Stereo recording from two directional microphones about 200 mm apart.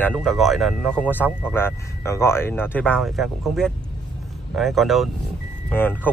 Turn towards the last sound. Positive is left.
turn(degrees=10)  # may be behind; listen again after turning